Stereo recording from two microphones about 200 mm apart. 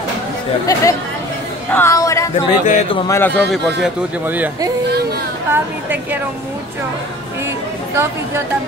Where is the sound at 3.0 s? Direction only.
10° left (ahead or behind).